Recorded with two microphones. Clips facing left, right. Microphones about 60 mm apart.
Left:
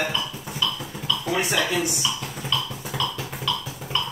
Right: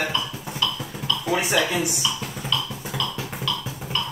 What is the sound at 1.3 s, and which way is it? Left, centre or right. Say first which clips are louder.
Speech: right 2 dB; centre.